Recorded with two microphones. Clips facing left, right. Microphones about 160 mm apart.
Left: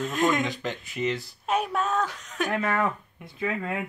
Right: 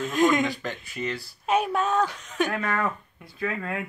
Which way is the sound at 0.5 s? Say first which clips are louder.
Even; 20° left (ahead or behind).